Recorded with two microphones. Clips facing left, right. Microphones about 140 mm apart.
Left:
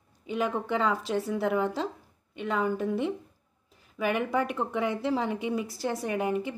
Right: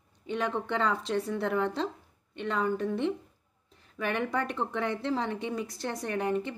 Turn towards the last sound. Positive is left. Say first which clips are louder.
# left 1 dB
turn(degrees=5)  # may be behind; listen again after turning